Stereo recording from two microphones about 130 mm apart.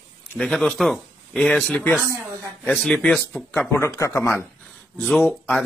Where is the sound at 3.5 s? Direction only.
20° left (ahead or behind).